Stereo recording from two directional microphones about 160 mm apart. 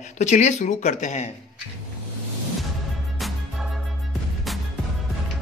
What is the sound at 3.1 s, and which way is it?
Music, centre (ahead or behind).